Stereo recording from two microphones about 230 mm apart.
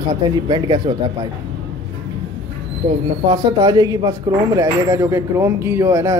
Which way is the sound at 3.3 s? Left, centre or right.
Centre.